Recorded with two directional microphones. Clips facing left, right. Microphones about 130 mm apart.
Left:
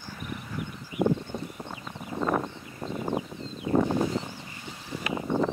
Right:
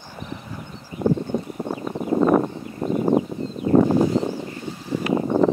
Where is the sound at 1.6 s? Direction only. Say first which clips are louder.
Right 14 dB; 45° right (ahead or behind).